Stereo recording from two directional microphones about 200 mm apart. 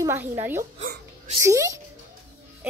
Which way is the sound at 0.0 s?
10° right (ahead or behind).